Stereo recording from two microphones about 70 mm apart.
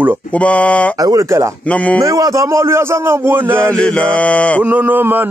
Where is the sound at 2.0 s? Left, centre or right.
Right.